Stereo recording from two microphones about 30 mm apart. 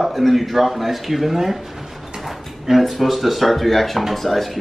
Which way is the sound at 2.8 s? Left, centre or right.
Centre.